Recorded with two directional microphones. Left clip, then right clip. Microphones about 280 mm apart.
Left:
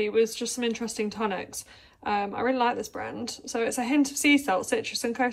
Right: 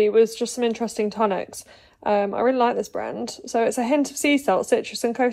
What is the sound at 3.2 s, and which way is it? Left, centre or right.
A woman's voice, centre.